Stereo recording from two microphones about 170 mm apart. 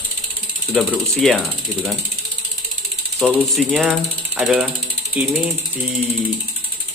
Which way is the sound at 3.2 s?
Centre (ahead or behind).